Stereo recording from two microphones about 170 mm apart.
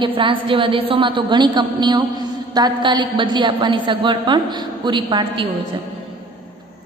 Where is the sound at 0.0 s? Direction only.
30° right (ahead or behind).